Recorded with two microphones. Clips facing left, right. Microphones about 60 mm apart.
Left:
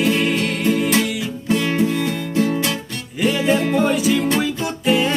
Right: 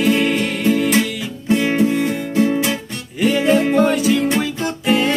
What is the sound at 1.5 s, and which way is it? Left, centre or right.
Music, centre.